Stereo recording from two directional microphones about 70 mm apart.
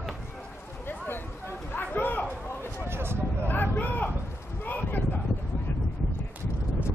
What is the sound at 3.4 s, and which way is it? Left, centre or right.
Vehicle, left.